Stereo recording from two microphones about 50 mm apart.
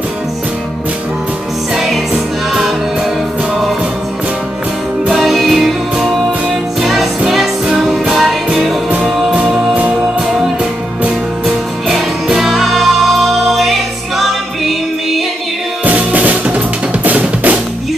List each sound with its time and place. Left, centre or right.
1.8 s music: centre
5.1 s music: centre
6.8 s music: centre
11.4 s music: centre
15.8 s drum: right